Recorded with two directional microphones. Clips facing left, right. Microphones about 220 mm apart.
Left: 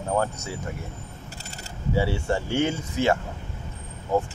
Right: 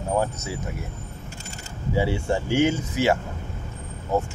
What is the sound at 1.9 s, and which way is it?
Speech, 15° right (ahead or behind).